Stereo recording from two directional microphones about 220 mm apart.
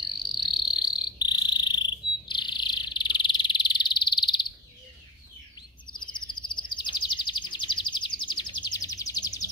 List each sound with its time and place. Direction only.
0.3 s cricket: 20° left (ahead or behind)
5.9 s bird: 20° left (ahead or behind)